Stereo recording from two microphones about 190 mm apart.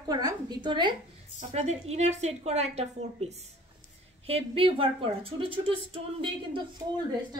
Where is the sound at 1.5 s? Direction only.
35° right (ahead or behind).